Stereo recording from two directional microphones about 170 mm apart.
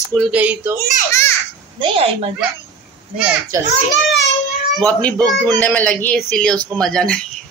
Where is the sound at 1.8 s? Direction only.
35° right (ahead or behind).